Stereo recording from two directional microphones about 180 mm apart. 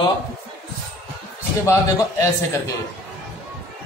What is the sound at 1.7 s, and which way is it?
Speech, 20° left (ahead or behind).